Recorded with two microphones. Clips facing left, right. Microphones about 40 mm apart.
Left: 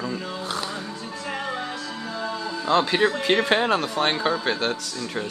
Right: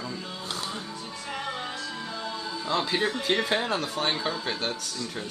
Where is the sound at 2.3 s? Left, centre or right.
Left.